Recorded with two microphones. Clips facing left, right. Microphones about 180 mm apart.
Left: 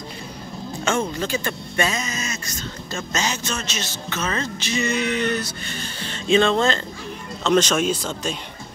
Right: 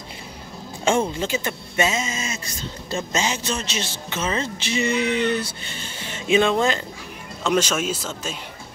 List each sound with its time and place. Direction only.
0.8 s speech: 30° right (ahead or behind)
3.2 s music: 30° right (ahead or behind); by 6.8 s 10° right (ahead or behind)
7.4 s speech: 10° right (ahead or behind)